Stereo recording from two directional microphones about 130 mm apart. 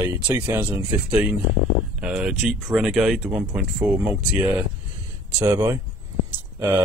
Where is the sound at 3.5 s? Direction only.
10° right (ahead or behind).